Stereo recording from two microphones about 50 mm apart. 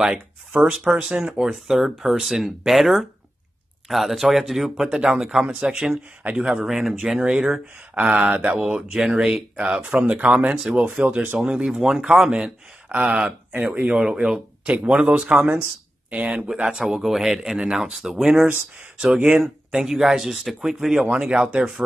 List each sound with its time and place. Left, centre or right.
0.0 s speech: centre
10.5 s speech: centre
10.8 s speech: right; by 12.0 s centre
12.3 s speech: right
14.9 s speech: right; by 21.8 s centre